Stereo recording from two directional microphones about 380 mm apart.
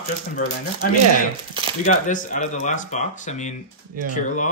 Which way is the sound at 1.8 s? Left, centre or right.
Centre.